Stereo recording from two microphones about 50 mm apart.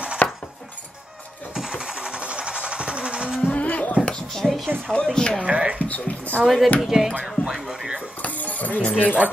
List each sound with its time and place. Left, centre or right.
0.2 s a sound: left
1.5 s sewing machine: centre
3.4 s music: left
4.1 s music: centre
4.8 s speech: centre
5.4 s speech: right
5.8 s speech: left
6.4 s speech: centre
8.2 s music: left